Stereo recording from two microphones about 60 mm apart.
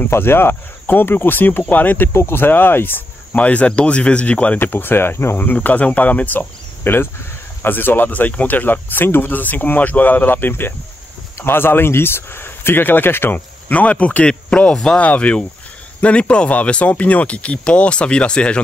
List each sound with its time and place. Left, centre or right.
0.1 s speech: left
2.1 s speech: left
4.6 s speech: left
13.7 s speech: left